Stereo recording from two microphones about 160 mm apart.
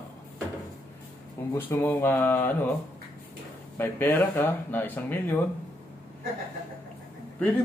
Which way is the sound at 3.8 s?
10° left (ahead or behind).